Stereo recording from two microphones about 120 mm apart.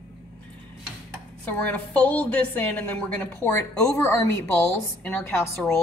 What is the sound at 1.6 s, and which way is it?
A woman's voice, 10° left (ahead or behind).